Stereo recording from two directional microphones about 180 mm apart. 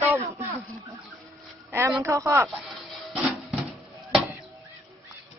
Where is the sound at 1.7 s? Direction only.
15° right (ahead or behind).